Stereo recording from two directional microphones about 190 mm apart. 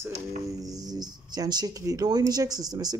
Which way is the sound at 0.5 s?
20° right (ahead or behind).